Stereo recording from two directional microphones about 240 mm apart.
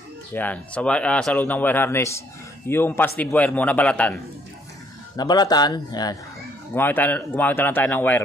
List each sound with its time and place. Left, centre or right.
0.3 s speech: centre
5.1 s speech: centre